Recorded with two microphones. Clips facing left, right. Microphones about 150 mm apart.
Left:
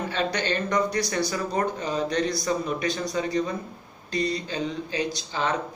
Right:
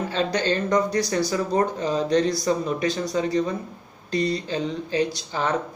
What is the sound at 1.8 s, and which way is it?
Speech, 30° right (ahead or behind).